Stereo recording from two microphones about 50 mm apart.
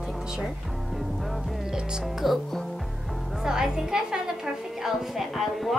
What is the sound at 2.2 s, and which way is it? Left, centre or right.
Speech, centre.